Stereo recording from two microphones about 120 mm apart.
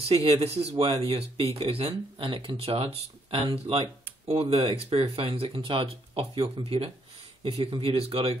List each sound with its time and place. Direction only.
0.1 s speech: 55° right (ahead or behind)